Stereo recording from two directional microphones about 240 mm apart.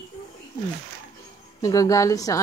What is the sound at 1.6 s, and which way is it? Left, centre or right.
Speech, centre.